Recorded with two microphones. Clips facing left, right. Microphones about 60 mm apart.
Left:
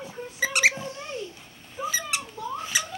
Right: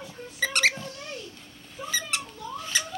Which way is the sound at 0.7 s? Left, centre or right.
Left.